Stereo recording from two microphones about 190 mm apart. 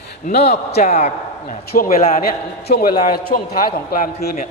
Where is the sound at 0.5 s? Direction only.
35° left (ahead or behind).